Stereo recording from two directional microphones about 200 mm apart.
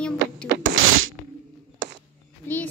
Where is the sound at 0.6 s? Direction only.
85° right.